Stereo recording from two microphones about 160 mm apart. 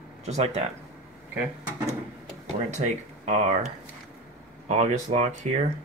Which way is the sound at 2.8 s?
45° right (ahead or behind).